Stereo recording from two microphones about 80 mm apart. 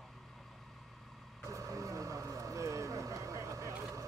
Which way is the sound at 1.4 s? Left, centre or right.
Right.